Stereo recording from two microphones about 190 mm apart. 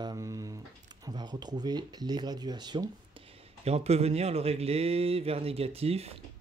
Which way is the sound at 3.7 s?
35° right (ahead or behind).